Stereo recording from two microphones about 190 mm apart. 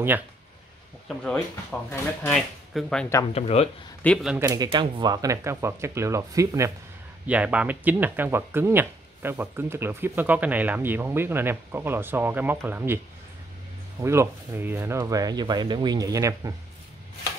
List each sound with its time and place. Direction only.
1.0 s speech: 5° left (ahead or behind)
3.3 s speech: 35° left (ahead or behind)
4.0 s speech: centre (ahead or behind)
4.4 s speech: 20° right (ahead or behind)
14.0 s speech: 15° right (ahead or behind)